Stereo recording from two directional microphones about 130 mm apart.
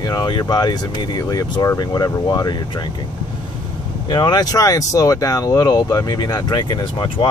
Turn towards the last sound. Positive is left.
turn(degrees=40)  # may be behind; listen again after turning